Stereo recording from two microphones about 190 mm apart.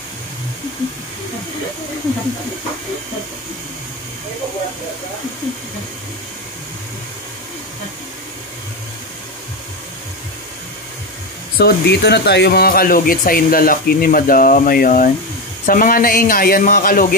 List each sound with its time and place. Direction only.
11.5 s speech: 55° left (ahead or behind)